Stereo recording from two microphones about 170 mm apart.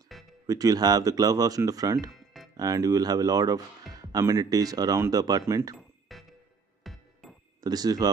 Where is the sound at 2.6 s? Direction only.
20° right (ahead or behind).